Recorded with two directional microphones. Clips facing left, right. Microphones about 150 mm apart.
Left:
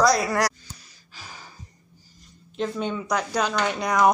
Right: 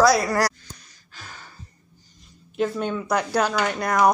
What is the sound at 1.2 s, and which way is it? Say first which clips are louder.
Music: right 1 dB; 10° left (ahead or behind).